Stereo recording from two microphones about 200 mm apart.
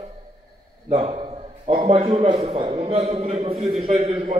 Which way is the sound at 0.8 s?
30° right (ahead or behind).